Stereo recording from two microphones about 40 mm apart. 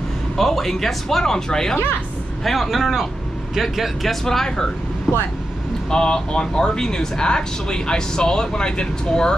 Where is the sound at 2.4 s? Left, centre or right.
Centre.